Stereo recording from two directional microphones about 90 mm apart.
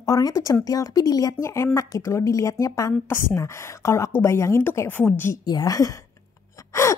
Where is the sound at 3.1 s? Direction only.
30° left (ahead or behind).